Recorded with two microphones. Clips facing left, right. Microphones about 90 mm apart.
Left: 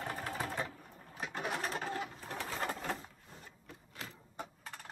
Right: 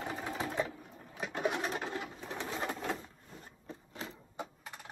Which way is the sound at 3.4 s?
35° right (ahead or behind).